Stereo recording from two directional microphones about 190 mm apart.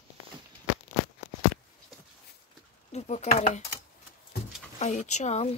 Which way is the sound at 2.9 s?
35° left (ahead or behind).